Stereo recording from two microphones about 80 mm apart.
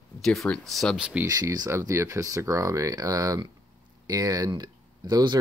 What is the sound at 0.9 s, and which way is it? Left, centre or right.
Speech, centre.